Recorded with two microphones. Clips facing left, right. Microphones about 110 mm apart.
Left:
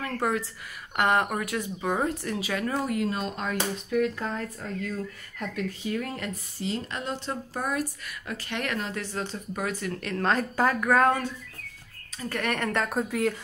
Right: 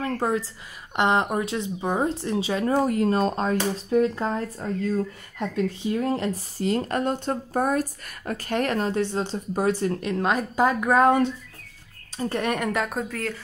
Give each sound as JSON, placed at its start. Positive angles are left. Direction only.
{"t": 0.0, "sound": "speech", "side_deg": -25}
{"t": 6.6, "sound": "speech", "side_deg": -50}
{"t": 12.4, "sound": "a woman's voice", "side_deg": -15}
{"t": 12.7, "sound": "a woman's voice", "side_deg": 0}